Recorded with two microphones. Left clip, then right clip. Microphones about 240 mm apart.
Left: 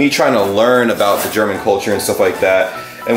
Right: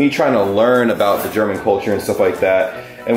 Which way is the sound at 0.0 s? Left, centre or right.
Centre.